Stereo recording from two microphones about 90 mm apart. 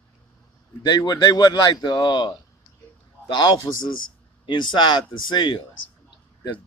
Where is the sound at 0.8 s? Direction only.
55° left (ahead or behind).